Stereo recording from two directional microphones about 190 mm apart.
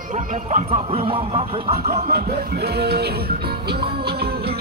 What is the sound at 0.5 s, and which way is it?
Speech, 30° right (ahead or behind).